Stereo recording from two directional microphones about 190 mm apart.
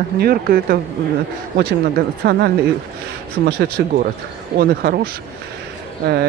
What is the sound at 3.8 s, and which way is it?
Speech, 60° right (ahead or behind).